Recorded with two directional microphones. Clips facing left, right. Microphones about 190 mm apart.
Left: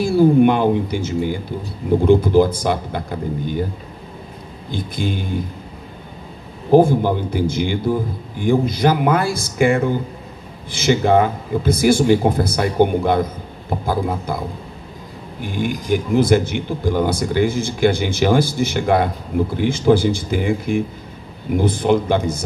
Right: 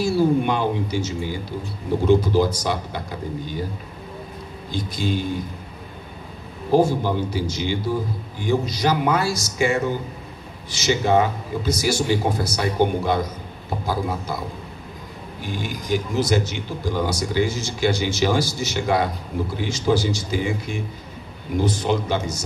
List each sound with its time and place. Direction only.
0.0 s a sound: 55° left (ahead or behind)
2.0 s speech: 55° left (ahead or behind)
4.6 s speech: 55° left (ahead or behind)
6.7 s speech: 55° left (ahead or behind)
15.4 s speech: 55° left (ahead or behind)